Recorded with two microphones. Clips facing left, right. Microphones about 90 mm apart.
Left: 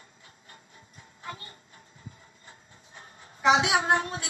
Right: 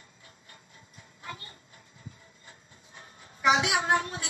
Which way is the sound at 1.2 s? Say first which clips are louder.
Left 2 dB; 35° left (ahead or behind).